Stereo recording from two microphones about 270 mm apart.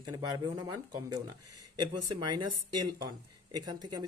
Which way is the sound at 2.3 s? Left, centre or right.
Centre.